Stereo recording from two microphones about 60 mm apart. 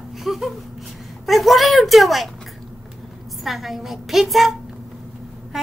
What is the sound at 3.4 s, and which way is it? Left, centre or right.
A woman's voice, centre.